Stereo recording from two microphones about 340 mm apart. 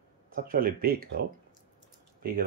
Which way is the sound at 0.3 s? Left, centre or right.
Right.